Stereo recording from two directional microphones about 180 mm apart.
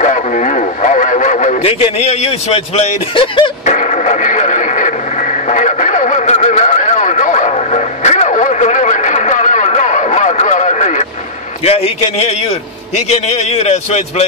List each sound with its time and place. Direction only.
0.0 s radio: 40° left (ahead or behind)
11.6 s a man's voice: 35° left (ahead or behind)